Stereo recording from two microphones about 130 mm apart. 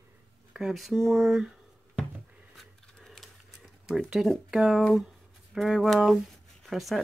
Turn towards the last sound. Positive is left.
turn(degrees=0)  # may be behind; listen again after turning